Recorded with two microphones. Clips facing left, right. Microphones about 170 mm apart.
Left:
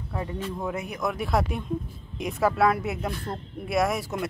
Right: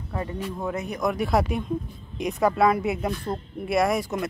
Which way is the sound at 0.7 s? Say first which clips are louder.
Right 4 dB; 5° left (ahead or behind).